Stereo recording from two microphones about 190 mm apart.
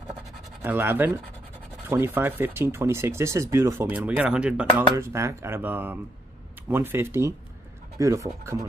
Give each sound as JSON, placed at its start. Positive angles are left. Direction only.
{"t": 0.6, "sound": "speech", "side_deg": -10}